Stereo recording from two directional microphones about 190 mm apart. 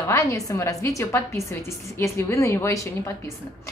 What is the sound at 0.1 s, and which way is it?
A woman's voice, 15° left (ahead or behind).